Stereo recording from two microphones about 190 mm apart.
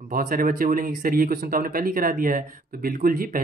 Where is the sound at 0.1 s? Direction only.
50° right (ahead or behind).